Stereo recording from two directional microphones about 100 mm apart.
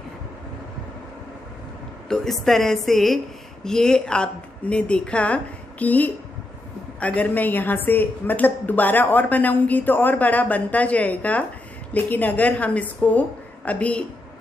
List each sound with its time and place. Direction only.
2.0 s a woman's voice: 5° left (ahead or behind)